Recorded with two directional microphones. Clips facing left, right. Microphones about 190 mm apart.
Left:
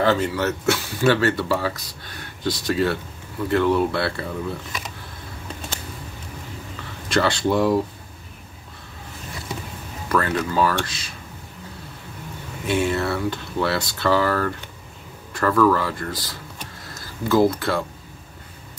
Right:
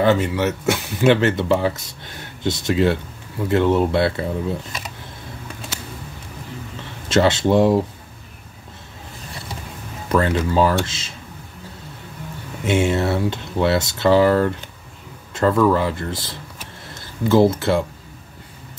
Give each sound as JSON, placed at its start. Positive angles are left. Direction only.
{"t": 0.0, "sound": "speech", "side_deg": -20}
{"t": 6.8, "sound": "speech", "side_deg": -20}
{"t": 10.0, "sound": "speech", "side_deg": -25}
{"t": 12.6, "sound": "speech", "side_deg": -20}